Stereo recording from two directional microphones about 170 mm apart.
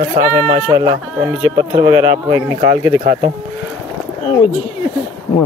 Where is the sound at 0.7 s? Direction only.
25° right (ahead or behind).